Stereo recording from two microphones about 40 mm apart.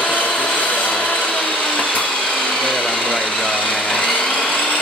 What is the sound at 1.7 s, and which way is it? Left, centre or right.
Blender, left.